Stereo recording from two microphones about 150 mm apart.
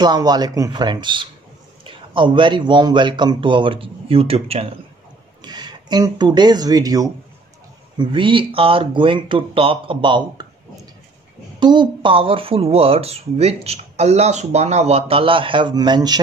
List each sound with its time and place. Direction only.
0.0 s speech: 25° right (ahead or behind)
5.4 s speech: 30° right (ahead or behind)
11.6 s speech: 30° right (ahead or behind)